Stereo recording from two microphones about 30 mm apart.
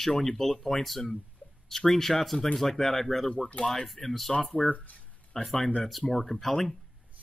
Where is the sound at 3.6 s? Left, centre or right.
Left.